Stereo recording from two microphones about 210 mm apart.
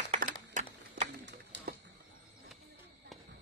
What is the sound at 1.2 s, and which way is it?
Pigeon, 55° right (ahead or behind).